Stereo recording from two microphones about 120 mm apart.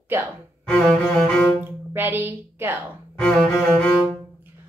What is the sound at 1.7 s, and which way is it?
A woman's voice, 15° right (ahead or behind).